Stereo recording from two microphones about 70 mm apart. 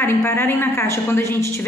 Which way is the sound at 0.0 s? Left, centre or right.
Left.